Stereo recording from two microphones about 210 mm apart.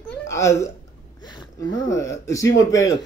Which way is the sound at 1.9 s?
15° left (ahead or behind).